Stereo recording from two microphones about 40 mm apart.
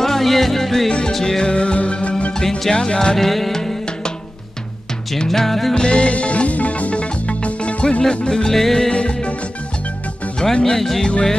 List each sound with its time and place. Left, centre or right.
0.0 s music: centre; by 2.3 s left
2.7 s music: left
3.2 s music: centre
5.3 s music: centre
5.8 s music: left
8.3 s music: centre
8.9 s music: left
10.4 s music: centre
11.0 s music: left